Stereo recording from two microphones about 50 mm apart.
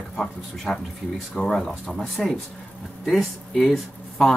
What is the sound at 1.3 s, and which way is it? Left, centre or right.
Speech, centre.